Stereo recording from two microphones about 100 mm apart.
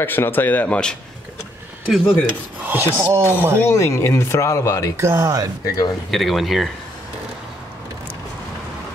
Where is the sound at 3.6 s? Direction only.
25° left (ahead or behind).